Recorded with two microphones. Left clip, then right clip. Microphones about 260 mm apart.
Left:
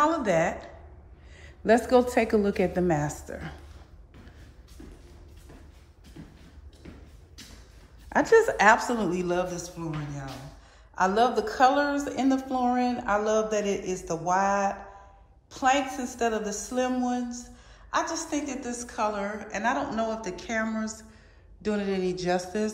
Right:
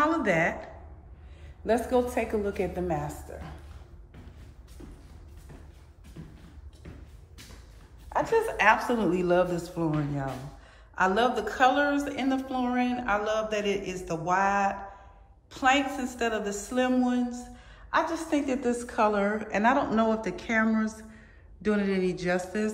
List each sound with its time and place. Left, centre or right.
0.0 s a woman's voice: centre
1.7 s a woman's voice: left
8.1 s a woman's voice: left
8.4 s speech: left; by 10.3 s centre
11.0 s a woman's voice: centre